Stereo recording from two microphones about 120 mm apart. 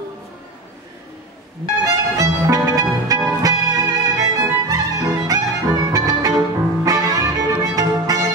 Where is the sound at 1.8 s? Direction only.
30° right (ahead or behind).